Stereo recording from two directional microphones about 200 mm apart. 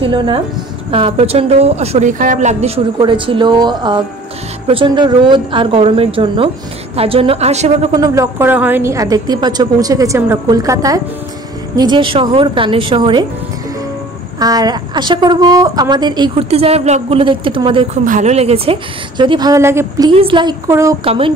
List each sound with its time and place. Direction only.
0.0 s a woman's voice: 25° right (ahead or behind)
7.9 s a woman's voice: 15° right (ahead or behind)
14.4 s a woman's voice: 20° right (ahead or behind)
18.0 s a woman's voice: 35° right (ahead or behind); by 20.1 s 15° right (ahead or behind)
20.2 s a woman's voice: 25° right (ahead or behind)
21.0 s a woman's voice: 30° right (ahead or behind)